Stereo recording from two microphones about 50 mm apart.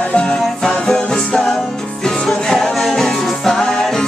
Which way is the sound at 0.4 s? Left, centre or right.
Centre.